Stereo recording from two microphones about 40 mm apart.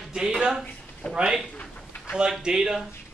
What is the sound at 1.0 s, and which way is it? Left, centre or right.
Speech, left.